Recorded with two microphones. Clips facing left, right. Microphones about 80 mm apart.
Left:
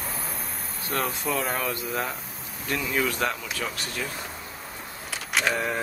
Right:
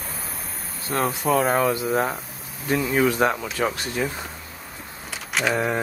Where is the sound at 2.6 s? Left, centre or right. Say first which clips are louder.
Right 6 dB; right.